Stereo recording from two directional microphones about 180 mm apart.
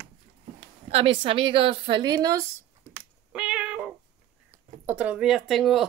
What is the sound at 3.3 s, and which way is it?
Cat, 5° right (ahead or behind).